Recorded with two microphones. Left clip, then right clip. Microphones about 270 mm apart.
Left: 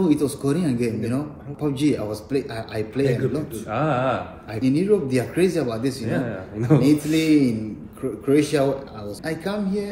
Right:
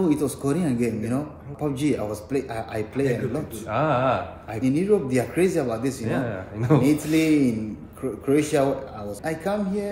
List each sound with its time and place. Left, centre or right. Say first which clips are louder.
0.0 s a man's voice: left 2 dB; centre
3.7 s speech: right 1 dB; right
4.6 s a man's voice: left 2 dB; centre
6.0 s speech: left 1 dB; right
6.9 s a man's voice: left 2 dB; centre